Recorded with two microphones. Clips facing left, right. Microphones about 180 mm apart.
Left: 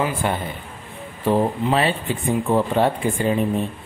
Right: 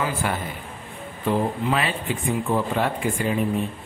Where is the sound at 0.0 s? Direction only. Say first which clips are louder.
Left 3 dB; 25° left (ahead or behind).